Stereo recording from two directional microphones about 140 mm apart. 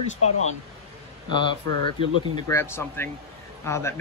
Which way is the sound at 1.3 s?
35° left (ahead or behind).